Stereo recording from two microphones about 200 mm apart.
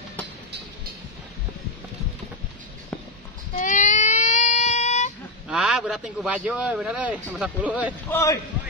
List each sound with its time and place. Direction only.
3.6 s baby cry: 40° left (ahead or behind)
5.5 s a man's voice: 5° right (ahead or behind)
8.1 s a man's voice: 15° left (ahead or behind)